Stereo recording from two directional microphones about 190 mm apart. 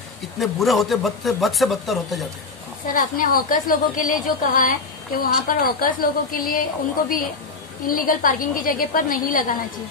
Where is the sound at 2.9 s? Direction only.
45° left (ahead or behind).